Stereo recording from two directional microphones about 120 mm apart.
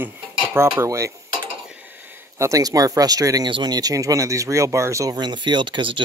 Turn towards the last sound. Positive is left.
turn(degrees=-45)  # may be behind; listen again after turning